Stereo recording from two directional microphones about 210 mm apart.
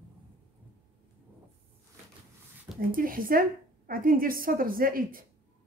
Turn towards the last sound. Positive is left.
turn(degrees=-40)  # may be behind; listen again after turning